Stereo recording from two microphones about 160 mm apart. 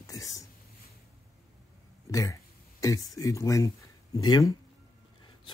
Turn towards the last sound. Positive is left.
turn(degrees=25)  # may be behind; listen again after turning